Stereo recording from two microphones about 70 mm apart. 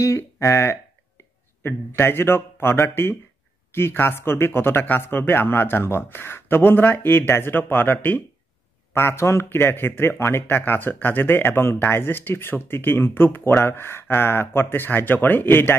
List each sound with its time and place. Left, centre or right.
0.4 s speech: left
8.9 s speech: left